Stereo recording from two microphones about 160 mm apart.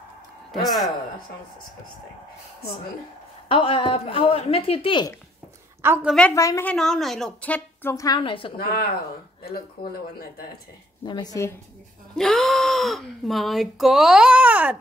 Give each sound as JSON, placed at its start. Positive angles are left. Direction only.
{"t": 0.5, "sound": "a woman's voice", "side_deg": 0}
{"t": 3.4, "sound": "a woman's voice", "side_deg": 35}
{"t": 6.0, "sound": "speech", "side_deg": 5}
{"t": 6.3, "sound": "a woman's voice", "side_deg": 20}
{"t": 6.7, "sound": "a woman's voice", "side_deg": 0}
{"t": 8.2, "sound": "a woman's voice", "side_deg": 30}
{"t": 9.8, "sound": "speech", "side_deg": 70}
{"t": 11.1, "sound": "a woman's voice", "side_deg": 25}
{"t": 12.2, "sound": "speech", "side_deg": 0}